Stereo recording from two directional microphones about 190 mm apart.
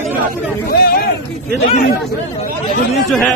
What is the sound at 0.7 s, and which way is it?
Speech, 55° left (ahead or behind).